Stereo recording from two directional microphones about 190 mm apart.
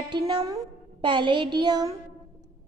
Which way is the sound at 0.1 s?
20° right (ahead or behind).